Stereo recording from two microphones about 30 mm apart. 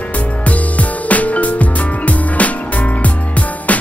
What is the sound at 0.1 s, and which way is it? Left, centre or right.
Music, left.